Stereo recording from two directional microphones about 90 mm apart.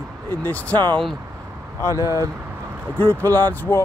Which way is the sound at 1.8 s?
35° left (ahead or behind).